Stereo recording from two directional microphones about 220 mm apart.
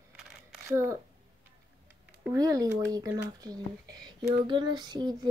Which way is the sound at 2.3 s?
15° right (ahead or behind).